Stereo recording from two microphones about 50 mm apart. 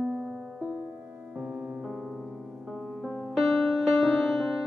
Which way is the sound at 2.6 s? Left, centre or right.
Centre.